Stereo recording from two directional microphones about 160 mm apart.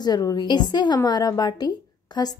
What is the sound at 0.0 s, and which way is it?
A woman's voice, 25° left (ahead or behind).